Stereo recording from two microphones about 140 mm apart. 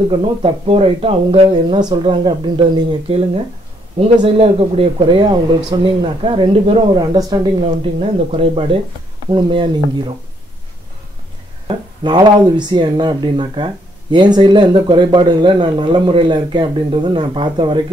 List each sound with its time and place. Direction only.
0.1 s speech: 40° right (ahead or behind)
6.9 s speech: 30° right (ahead or behind)
7.6 s speech: 45° right (ahead or behind)
9.3 s speech: 35° right (ahead or behind)
11.6 s speech: 35° right (ahead or behind)